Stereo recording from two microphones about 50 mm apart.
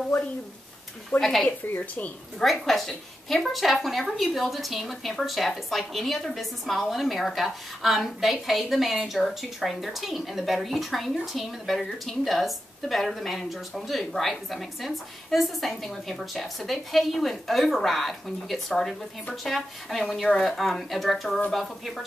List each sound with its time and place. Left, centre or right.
1.2 s a woman's voice: centre